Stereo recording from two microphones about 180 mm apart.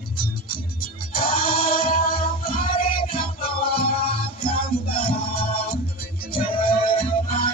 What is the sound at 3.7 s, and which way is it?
Music, 30° left (ahead or behind).